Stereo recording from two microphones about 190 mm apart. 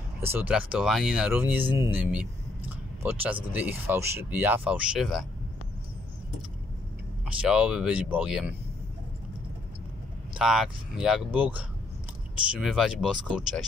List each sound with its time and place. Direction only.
0.2 s speech: 10° right (ahead or behind)
7.2 s speech: 5° right (ahead or behind)
10.3 s speech: 5° right (ahead or behind)